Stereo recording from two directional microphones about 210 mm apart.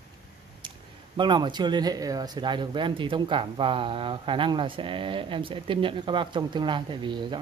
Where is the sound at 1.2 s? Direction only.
20° right (ahead or behind).